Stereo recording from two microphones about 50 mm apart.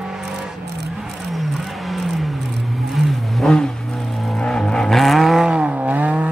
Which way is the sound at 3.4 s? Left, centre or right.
Centre.